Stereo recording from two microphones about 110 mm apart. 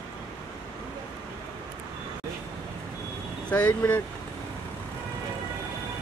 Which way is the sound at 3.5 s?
15° left (ahead or behind).